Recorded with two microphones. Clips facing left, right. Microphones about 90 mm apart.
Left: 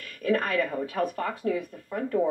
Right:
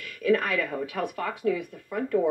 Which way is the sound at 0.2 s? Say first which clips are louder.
Right 1 dB; 40° left (ahead or behind).